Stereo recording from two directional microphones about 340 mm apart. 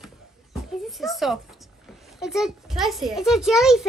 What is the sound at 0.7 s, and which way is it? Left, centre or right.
A child's voice, centre.